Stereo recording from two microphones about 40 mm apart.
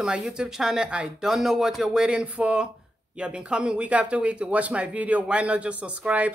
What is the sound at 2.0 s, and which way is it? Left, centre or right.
Speech, right.